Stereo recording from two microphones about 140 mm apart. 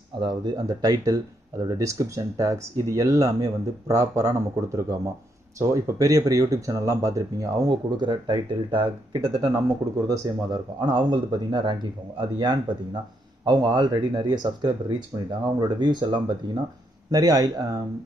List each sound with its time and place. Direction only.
0.2 s speech: 30° right (ahead or behind)
10.0 s speech: 25° right (ahead or behind)